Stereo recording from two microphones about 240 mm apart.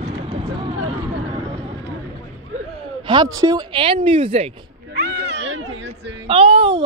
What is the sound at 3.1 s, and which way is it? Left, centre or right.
Speech, centre.